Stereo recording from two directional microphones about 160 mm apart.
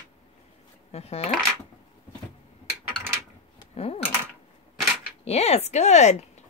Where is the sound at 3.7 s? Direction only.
40° left (ahead or behind).